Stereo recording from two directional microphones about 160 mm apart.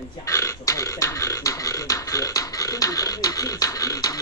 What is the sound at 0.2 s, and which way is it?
Beatboxing, 20° left (ahead or behind).